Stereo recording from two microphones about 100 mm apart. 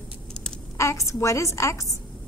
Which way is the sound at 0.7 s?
30° left (ahead or behind).